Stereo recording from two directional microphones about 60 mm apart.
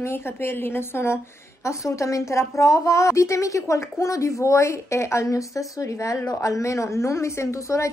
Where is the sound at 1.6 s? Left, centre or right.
Left.